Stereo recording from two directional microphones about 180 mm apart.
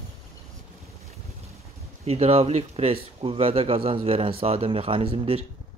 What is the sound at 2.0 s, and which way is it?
Speech, 35° right (ahead or behind).